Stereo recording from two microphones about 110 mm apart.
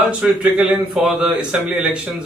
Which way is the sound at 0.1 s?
5° right (ahead or behind).